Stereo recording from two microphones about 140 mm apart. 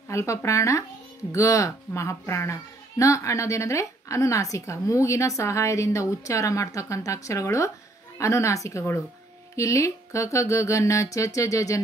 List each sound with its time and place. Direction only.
0.1 s speech: 20° left (ahead or behind)